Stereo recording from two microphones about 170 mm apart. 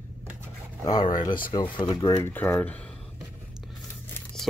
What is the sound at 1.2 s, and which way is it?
Speech, 55° left (ahead or behind).